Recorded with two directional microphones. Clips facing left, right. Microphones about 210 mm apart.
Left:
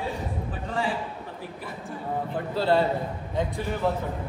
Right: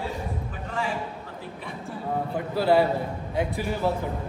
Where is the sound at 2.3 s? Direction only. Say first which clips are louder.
Right 2 dB; 10° right (ahead or behind).